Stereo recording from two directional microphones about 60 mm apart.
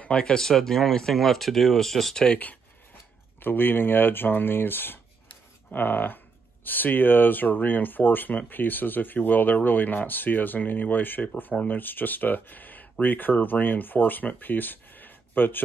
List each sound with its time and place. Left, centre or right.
0.0 s speech: centre
2.2 s speech: left